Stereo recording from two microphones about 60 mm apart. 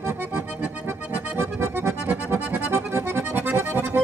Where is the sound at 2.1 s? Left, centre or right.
Right.